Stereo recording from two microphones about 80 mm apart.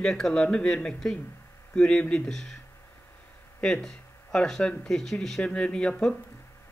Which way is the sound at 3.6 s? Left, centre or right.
Centre.